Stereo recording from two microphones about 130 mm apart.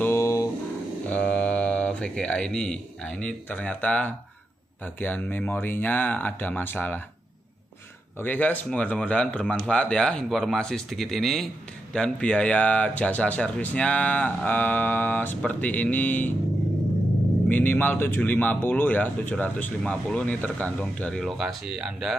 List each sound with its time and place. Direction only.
0.0 s a sound: 20° left (ahead or behind)
1.0 s speech: 10° left (ahead or behind)
8.2 s speech: 15° left (ahead or behind)
17.5 s speech: 15° left (ahead or behind); by 22.1 s 5° right (ahead or behind)